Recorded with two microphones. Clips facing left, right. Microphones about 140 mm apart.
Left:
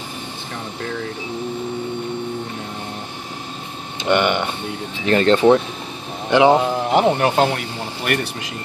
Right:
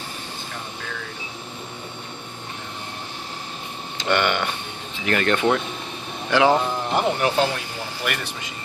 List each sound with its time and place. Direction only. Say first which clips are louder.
4.0 s speech: left 4 dB; 20° left (ahead or behind)
7.2 s speech: left 4 dB; 55° left (ahead or behind)